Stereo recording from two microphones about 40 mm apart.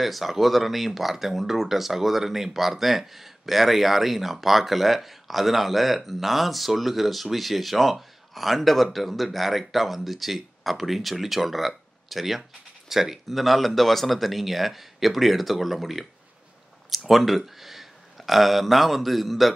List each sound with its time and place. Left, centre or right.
0.0 s speech: centre
17.1 s speech: centre